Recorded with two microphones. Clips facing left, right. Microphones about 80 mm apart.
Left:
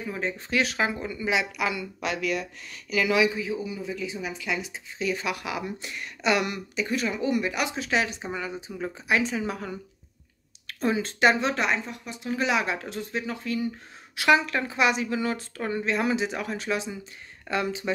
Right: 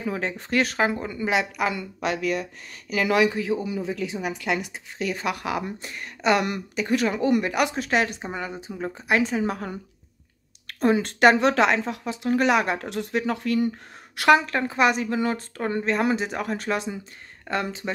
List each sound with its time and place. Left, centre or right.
0.0 s speech: right
0.5 s a woman's voice: right
3.3 s a woman's voice: right
5.1 s a woman's voice: right
8.2 s a woman's voice: right
12.3 s a woman's voice: right
14.1 s a woman's voice: right